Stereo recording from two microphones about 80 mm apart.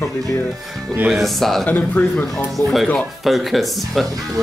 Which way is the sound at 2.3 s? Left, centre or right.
Centre.